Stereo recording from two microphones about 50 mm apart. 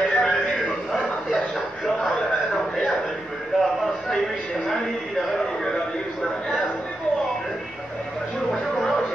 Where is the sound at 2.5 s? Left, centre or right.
Centre.